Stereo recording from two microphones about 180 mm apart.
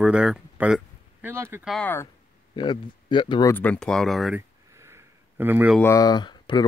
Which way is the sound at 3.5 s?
10° left (ahead or behind).